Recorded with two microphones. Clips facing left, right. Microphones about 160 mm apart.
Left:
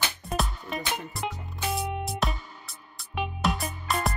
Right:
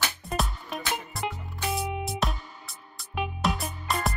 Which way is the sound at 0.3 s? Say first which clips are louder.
Left 1 dB; centre (ahead or behind).